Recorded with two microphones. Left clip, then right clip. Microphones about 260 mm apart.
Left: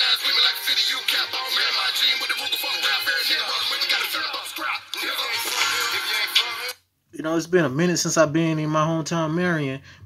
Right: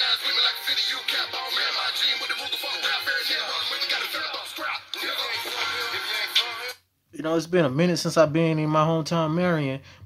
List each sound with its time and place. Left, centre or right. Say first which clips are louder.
0.0 s music: left 3 dB; left
7.2 s speech: left 1 dB; centre